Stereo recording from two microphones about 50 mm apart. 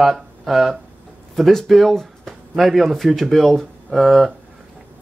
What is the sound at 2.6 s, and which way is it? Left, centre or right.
Speech, centre.